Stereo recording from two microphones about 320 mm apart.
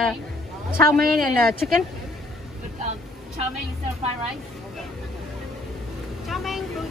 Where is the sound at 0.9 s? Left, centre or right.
Right.